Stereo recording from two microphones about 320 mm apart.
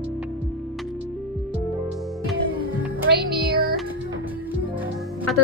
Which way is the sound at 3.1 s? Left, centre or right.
Right.